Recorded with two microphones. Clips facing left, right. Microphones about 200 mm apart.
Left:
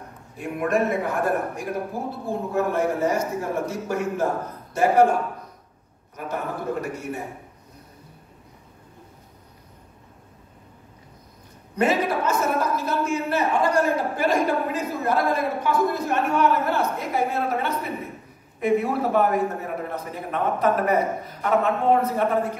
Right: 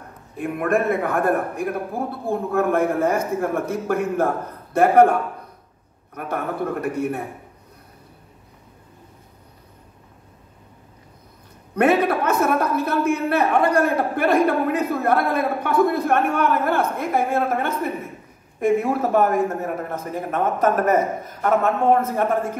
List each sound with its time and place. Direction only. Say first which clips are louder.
0.4 s a man's voice: right 2 dB; 55° right (ahead or behind)
6.1 s a man's voice: right 3 dB; 60° right (ahead or behind)
11.7 s a man's voice: right 4 dB; 60° right (ahead or behind)